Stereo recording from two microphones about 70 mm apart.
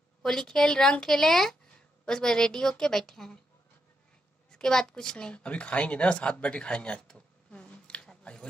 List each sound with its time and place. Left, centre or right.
0.2 s a woman's voice: centre
4.5 s a woman's voice: centre
6.4 s a sound: centre